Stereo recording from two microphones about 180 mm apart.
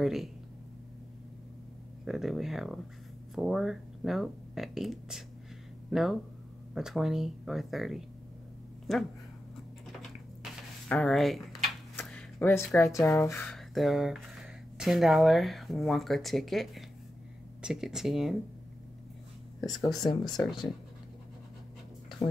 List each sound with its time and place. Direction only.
0.0 s speech: centre (ahead or behind)
2.0 s speech: centre (ahead or behind)
10.9 s speech: 5° left (ahead or behind)
12.0 s a sound: 5° left (ahead or behind)
12.7 s speech: 15° left (ahead or behind)
13.0 s speech: 5° left (ahead or behind)
20.2 s speech: centre (ahead or behind)